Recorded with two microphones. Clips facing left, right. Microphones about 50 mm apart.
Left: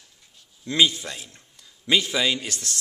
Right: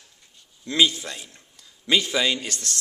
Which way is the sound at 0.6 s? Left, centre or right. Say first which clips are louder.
Even; centre.